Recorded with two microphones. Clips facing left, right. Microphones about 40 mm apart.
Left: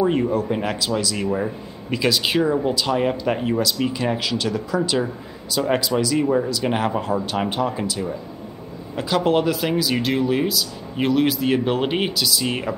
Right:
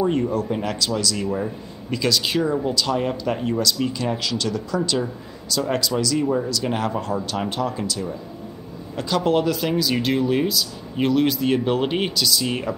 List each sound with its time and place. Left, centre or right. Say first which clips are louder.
0.0 s a man's voice: left 2 dB; centre